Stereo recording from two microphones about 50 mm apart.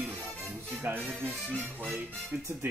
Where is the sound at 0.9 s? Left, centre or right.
Right.